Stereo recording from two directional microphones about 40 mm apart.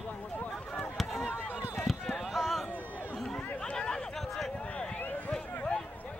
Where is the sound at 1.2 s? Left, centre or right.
Left.